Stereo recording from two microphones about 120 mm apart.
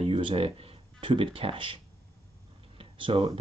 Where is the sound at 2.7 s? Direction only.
45° right (ahead or behind).